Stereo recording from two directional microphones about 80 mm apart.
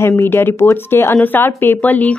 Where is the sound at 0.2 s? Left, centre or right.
Left.